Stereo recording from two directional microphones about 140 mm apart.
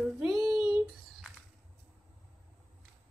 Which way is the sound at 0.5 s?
5° right (ahead or behind).